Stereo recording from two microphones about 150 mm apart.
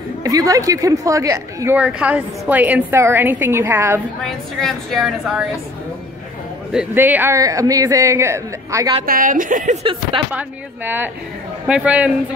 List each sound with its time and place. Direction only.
0.2 s a man's voice: 25° right (ahead or behind)
1.8 s a woman's voice: 10° right (ahead or behind)
4.2 s a woman's voice: 5° left (ahead or behind)
6.7 s a man's voice: 10° right (ahead or behind)
9.0 s a woman's voice: 70° right (ahead or behind)
10.1 s speech: 35° right (ahead or behind)
11.6 s a woman's voice: 5° right (ahead or behind)